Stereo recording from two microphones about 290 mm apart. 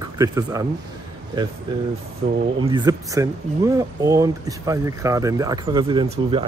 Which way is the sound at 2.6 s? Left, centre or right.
Centre.